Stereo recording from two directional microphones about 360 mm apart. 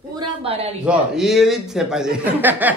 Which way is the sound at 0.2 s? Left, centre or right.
Centre.